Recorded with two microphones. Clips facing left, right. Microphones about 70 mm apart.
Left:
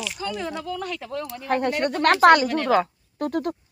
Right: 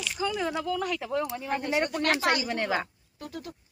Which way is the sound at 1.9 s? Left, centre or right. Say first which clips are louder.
Left 11 dB; left.